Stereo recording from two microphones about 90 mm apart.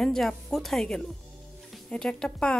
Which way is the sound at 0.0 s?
5° left (ahead or behind).